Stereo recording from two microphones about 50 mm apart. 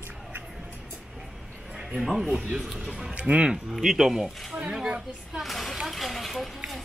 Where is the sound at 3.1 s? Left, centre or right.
Right.